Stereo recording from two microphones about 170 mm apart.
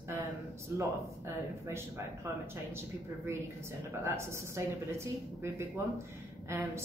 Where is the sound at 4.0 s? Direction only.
15° right (ahead or behind).